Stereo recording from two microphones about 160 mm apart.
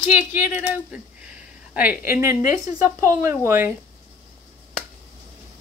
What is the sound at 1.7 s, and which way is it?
A woman's voice, 10° right (ahead or behind).